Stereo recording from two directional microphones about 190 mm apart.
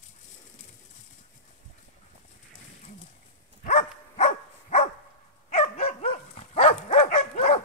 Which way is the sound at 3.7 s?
35° left (ahead or behind).